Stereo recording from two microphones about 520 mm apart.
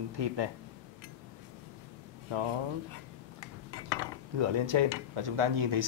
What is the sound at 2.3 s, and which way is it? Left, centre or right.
Speech, right.